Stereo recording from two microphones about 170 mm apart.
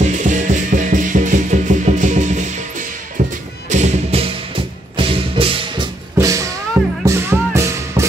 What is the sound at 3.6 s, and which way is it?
Music, 45° right (ahead or behind).